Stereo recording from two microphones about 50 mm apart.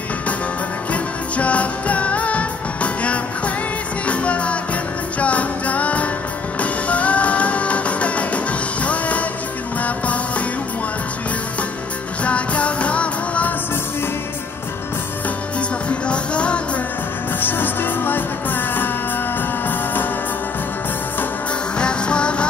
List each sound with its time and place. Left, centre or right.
0.9 s music: left
12.2 s music: left
16.1 s music: left
17.4 s music: left
21.7 s music: centre